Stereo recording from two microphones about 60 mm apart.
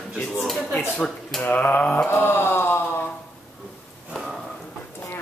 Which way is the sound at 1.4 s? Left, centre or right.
Left.